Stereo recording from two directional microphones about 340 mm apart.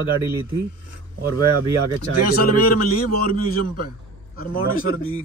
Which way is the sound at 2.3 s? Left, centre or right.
Left.